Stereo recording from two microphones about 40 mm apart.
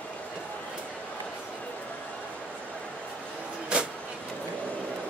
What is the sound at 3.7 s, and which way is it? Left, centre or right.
Vehicle, right.